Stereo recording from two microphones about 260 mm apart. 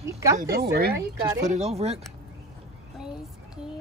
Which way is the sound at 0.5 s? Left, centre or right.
Right.